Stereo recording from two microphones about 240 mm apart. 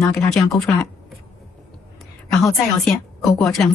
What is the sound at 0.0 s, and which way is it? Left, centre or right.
Speech, centre.